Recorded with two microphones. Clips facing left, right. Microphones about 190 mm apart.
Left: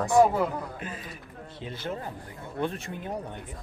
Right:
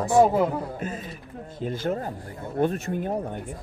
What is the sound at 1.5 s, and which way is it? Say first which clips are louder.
Speech: right 8 dB; 45° right (ahead or behind).